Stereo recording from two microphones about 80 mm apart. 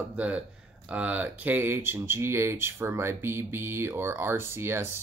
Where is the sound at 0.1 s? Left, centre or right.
Centre.